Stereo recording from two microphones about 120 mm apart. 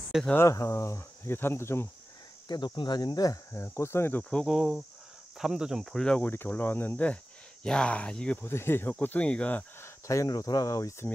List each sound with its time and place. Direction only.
0.3 s speech: 25° left (ahead or behind)
2.4 s speech: 35° left (ahead or behind)
3.6 s speech: 20° left (ahead or behind)
4.2 s speech: 10° left (ahead or behind)
10.0 s speech: 25° left (ahead or behind)